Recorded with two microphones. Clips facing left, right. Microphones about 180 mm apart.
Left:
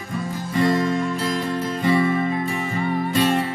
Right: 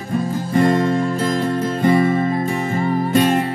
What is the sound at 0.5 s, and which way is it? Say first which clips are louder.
Music: right 4 dB; 50° right (ahead or behind).